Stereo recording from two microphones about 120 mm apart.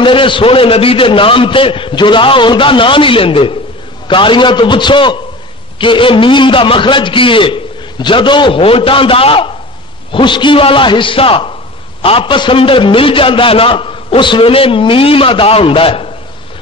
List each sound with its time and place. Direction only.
0.0 s a man's voice: 45° left (ahead or behind)